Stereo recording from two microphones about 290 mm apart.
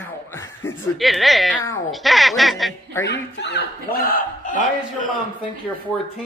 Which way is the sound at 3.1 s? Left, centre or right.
Left.